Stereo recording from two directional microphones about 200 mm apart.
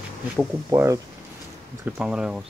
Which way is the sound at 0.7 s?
15° right (ahead or behind).